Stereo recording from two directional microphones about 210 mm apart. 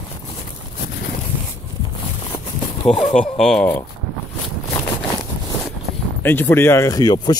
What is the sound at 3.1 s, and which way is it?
Speech, centre (ahead or behind).